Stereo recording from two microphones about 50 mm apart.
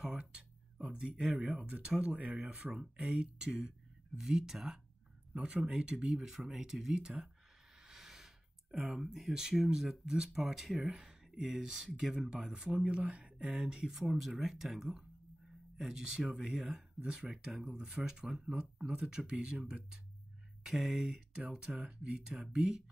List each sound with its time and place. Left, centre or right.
0.2 s a sound: right
1.0 s speech: right
2.1 s speech: right; by 4.7 s centre
5.3 s speech: right
6.1 s speech: centre
7.8 s gasp: centre
8.7 s speech: centre
17.3 s speech: centre